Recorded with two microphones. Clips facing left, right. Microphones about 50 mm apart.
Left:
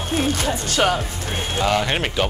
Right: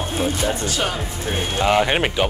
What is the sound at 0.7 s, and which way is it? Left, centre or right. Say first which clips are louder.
Speech: left 5 dB; left.